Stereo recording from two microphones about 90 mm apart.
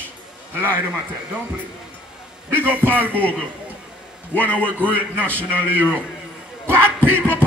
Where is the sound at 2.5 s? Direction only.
20° right (ahead or behind).